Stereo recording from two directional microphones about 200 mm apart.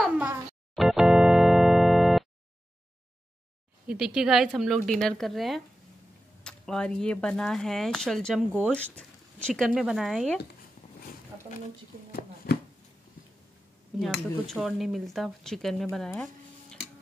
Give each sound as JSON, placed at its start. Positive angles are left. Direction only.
{"t": 0.0, "sound": "organ", "side_deg": -5}
{"t": 3.8, "sound": "speech", "side_deg": -5}
{"t": 12.1, "sound": "a sound", "side_deg": 45}
{"t": 13.9, "sound": "speech", "side_deg": 0}